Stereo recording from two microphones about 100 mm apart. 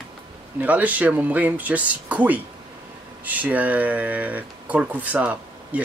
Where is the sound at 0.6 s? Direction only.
15° right (ahead or behind).